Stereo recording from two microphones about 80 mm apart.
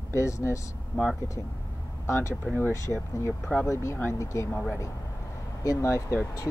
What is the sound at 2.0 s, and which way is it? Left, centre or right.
Speech, left.